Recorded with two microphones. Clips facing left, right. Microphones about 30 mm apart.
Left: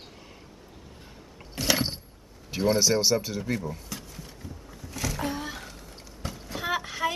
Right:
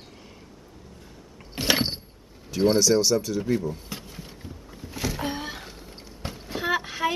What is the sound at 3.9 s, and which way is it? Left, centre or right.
Rowboat, right.